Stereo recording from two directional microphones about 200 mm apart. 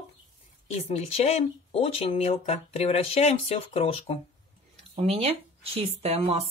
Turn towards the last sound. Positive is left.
turn(degrees=-30)  # may be behind; listen again after turning